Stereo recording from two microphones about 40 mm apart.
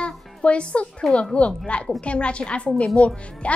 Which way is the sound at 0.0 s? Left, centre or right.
Left.